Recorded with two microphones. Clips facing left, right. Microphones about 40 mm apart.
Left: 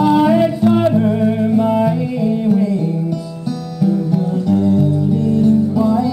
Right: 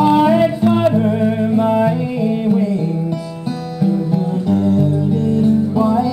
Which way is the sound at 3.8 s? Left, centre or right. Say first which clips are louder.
Left 1 dB; right.